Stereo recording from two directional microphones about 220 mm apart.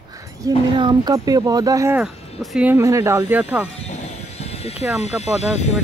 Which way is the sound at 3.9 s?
30° left (ahead or behind).